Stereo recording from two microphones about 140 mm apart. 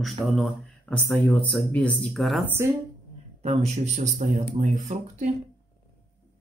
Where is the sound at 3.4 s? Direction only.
50° right (ahead or behind).